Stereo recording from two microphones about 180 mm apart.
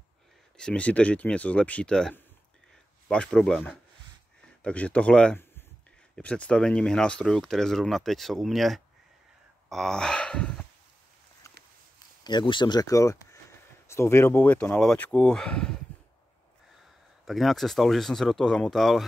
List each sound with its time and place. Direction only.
0.6 s speech: 5° left (ahead or behind)
12.2 s speech: 25° left (ahead or behind); by 15.7 s 5° left (ahead or behind)
17.2 s speech: centre (ahead or behind)